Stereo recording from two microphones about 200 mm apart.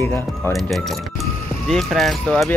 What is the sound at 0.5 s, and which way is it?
Speech, centre (ahead or behind).